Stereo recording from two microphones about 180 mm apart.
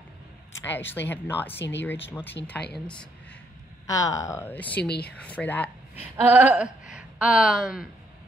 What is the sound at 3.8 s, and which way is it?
Speech, 20° left (ahead or behind).